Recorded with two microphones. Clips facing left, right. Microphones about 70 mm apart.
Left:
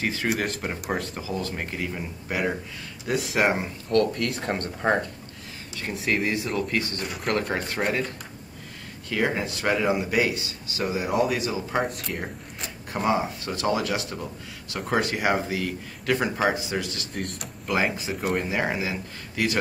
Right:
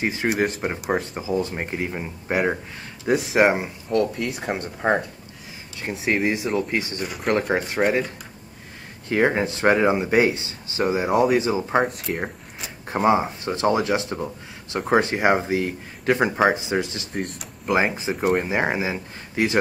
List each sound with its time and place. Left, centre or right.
0.0 s speech: right
0.3 s speech: centre
1.1 s speech: centre
3.2 s speech: centre
3.4 s speech: centre
5.9 s speech: right
7.1 s speech: centre
7.3 s speech: centre
9.1 s speech: right
11.8 s speech: centre
12.8 s speech: right
17.1 s speech: centre
17.6 s speech: right